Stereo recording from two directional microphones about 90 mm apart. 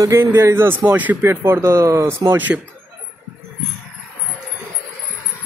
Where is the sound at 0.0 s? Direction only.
35° right (ahead or behind); by 2.6 s 20° right (ahead or behind).